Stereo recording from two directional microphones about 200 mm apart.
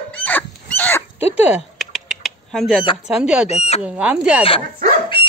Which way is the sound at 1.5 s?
Centre (ahead or behind).